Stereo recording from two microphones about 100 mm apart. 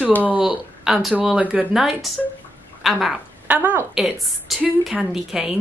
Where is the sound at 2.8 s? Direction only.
Centre (ahead or behind).